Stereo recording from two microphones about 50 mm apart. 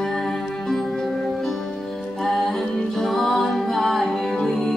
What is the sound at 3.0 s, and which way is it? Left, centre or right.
Music, centre.